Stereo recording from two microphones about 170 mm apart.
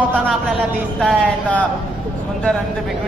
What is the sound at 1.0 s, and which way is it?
Speech, 5° left (ahead or behind).